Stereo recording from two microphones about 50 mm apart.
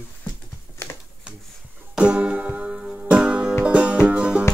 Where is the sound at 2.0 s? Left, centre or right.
Right.